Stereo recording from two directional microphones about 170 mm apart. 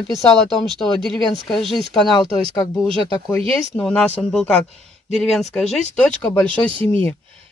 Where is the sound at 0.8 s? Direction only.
Centre (ahead or behind).